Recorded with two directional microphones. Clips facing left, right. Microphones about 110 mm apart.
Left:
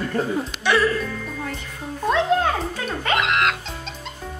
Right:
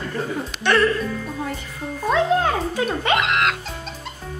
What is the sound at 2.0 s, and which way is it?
Music, centre (ahead or behind).